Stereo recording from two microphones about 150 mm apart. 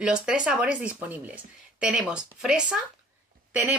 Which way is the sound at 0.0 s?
5° right (ahead or behind).